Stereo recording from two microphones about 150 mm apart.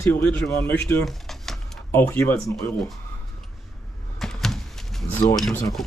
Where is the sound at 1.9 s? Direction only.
15° left (ahead or behind).